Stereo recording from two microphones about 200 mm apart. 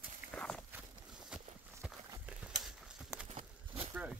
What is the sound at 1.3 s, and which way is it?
Horse, centre (ahead or behind).